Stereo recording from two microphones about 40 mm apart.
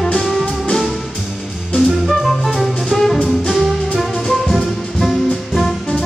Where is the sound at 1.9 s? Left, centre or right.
Centre.